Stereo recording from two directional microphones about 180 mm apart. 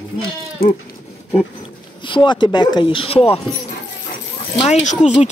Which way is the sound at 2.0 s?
25° left (ahead or behind).